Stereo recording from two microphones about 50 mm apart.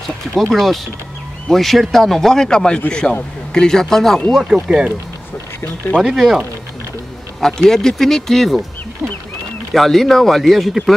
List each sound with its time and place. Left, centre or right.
0.0 s a man's voice: centre
4.6 s speech: centre
6.1 s speech: centre
7.3 s speech: centre
9.7 s a man's voice: centre